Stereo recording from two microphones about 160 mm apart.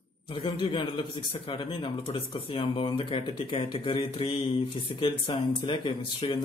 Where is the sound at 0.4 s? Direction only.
30° left (ahead or behind).